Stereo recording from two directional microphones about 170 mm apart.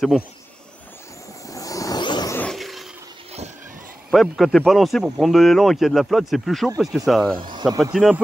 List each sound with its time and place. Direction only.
1.5 s vehicle: 20° left (ahead or behind)
2.3 s vehicle: 5° left (ahead or behind)
4.1 s speech: centre (ahead or behind)
7.5 s speech: 25° right (ahead or behind)
7.8 s speech: centre (ahead or behind)